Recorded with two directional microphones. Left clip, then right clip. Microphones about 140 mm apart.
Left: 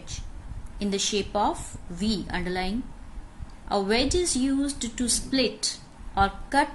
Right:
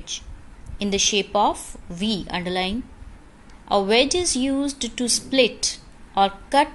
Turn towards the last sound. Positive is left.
turn(degrees=-30)  # may be behind; listen again after turning